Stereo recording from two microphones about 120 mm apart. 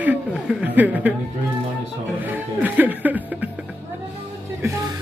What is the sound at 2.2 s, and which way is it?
Music, 15° right (ahead or behind).